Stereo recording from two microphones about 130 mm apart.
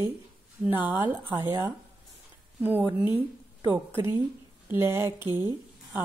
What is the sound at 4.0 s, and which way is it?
Speech, 20° right (ahead or behind).